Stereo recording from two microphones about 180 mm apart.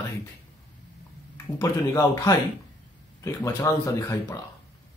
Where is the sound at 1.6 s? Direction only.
20° left (ahead or behind).